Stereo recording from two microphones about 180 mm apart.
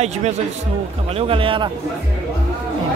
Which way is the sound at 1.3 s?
30° right (ahead or behind).